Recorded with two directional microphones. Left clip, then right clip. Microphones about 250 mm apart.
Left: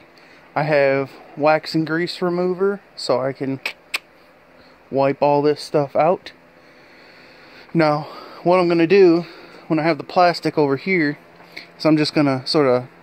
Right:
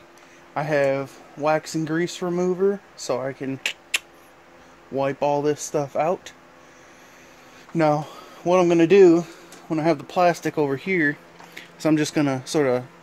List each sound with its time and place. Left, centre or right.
0.6 s speech: left
7.7 s a man's voice: left